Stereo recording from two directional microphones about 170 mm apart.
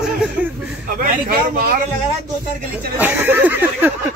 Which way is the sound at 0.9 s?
60° right (ahead or behind).